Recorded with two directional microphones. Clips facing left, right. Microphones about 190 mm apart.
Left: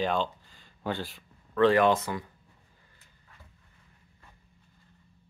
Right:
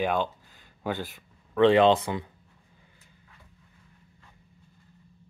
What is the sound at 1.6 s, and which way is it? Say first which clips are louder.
Speech: right 3 dB; 20° right (ahead or behind).